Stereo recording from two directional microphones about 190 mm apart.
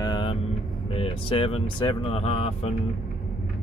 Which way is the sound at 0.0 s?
25° left (ahead or behind).